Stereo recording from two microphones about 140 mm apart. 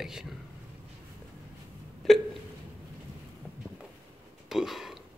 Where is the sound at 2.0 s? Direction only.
Centre (ahead or behind).